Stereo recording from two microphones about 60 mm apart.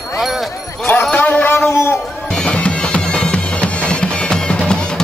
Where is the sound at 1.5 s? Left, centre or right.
Left.